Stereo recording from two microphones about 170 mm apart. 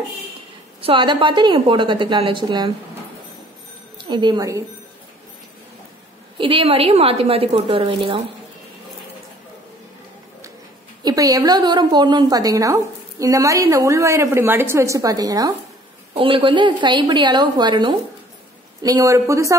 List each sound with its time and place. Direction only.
0.7 s a woman's voice: 30° right (ahead or behind)
4.0 s a woman's voice: 25° right (ahead or behind)
6.3 s a woman's voice: 30° right (ahead or behind)
11.1 s a woman's voice: 20° right (ahead or behind)